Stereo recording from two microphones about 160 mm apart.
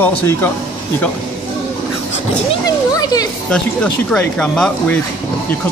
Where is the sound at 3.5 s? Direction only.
5° left (ahead or behind).